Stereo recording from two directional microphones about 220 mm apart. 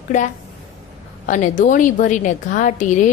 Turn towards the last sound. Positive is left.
turn(degrees=35)  # may be behind; listen again after turning